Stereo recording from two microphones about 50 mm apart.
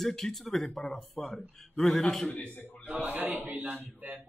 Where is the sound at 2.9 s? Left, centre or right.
Right.